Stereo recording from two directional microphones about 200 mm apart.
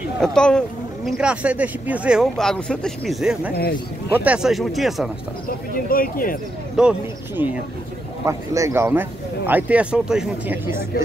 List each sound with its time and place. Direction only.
0.2 s speech: 5° left (ahead or behind)
5.9 s speech: 45° left (ahead or behind)
6.8 s speech: 5° right (ahead or behind)